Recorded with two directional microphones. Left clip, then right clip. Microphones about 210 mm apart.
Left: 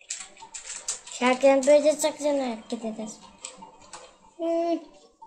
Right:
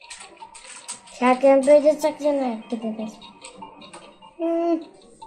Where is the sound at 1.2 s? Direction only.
15° left (ahead or behind).